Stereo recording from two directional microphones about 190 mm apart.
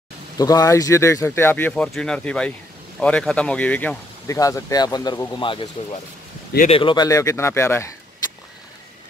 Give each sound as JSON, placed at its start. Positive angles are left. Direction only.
{"t": 0.4, "sound": "speech", "side_deg": 20}
{"t": 6.7, "sound": "speech", "side_deg": 25}